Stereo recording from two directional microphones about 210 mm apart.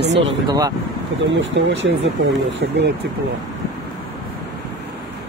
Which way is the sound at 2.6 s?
50° right (ahead or behind).